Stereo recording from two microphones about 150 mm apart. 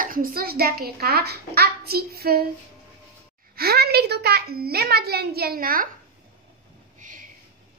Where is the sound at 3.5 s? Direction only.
90° right; by 5.8 s 75° right (ahead or behind).